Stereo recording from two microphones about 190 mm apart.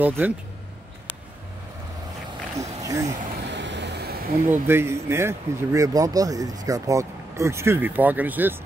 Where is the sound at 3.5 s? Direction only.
70° right (ahead or behind).